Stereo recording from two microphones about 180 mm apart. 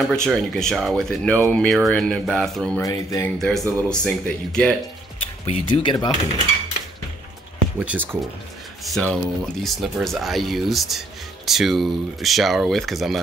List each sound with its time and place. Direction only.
0.1 s speech: 5° left (ahead or behind)
2.8 s speech: 20° left (ahead or behind)
3.3 s speech: centre (ahead or behind)
5.5 s speech: 25° left (ahead or behind)
7.8 s speech: 10° right (ahead or behind)